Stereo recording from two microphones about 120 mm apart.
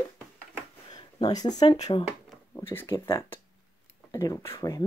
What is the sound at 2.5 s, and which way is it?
Speech, 15° left (ahead or behind).